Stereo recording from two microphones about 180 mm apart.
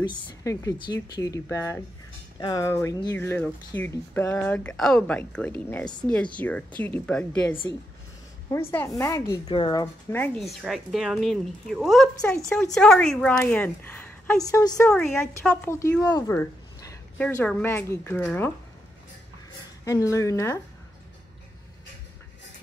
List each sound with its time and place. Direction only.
0.0 s speech: 25° left (ahead or behind)
10.1 s speech: 5° left (ahead or behind)
19.8 s speech: 15° left (ahead or behind)